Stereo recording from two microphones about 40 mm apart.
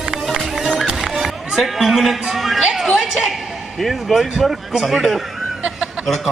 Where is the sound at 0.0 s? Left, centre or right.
Centre.